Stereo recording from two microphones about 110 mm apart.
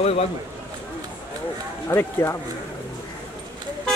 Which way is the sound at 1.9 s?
20° left (ahead or behind).